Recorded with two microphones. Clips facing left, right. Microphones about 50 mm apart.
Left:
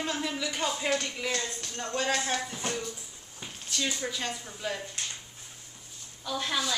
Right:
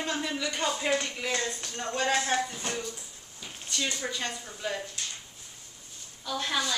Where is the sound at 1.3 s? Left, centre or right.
Right.